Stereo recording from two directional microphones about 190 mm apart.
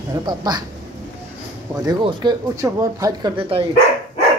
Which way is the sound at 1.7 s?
20° right (ahead or behind).